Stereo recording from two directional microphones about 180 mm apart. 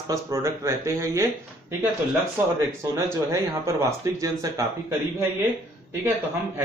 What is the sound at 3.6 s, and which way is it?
Speech, 20° right (ahead or behind).